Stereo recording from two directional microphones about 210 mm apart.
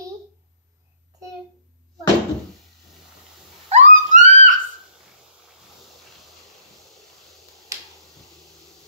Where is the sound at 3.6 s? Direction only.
35° right (ahead or behind).